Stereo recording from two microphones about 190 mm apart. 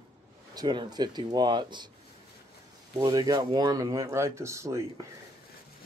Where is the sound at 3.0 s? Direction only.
20° right (ahead or behind).